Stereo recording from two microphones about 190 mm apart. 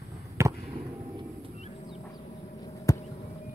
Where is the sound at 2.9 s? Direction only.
15° left (ahead or behind).